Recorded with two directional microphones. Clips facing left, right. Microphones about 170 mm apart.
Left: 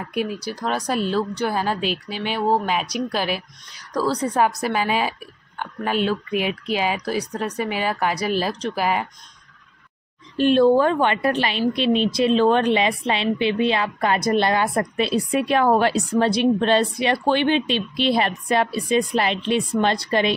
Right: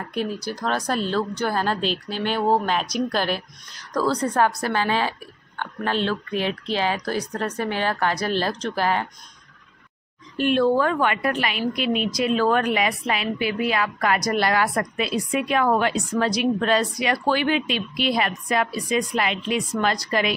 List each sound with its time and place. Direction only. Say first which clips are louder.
0.6 s speech: left 1 dB; 10° left (ahead or behind)
10.3 s a woman's voice: left 4 dB; 30° left (ahead or behind)